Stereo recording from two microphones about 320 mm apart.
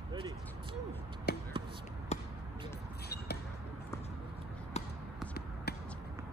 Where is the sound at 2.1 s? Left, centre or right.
Left.